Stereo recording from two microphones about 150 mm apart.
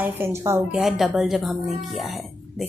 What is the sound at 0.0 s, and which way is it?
Speech, 15° right (ahead or behind).